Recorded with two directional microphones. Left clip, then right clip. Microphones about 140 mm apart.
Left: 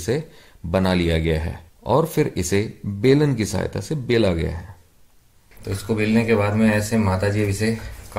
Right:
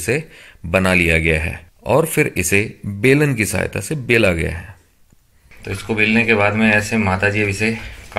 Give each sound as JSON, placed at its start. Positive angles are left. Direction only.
{"t": 0.0, "sound": "speech", "side_deg": -5}